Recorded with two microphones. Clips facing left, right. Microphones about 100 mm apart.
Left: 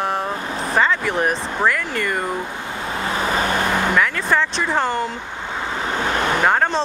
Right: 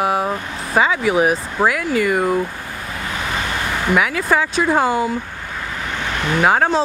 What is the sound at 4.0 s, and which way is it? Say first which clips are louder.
Speech: right 1 dB; 10° right (ahead or behind).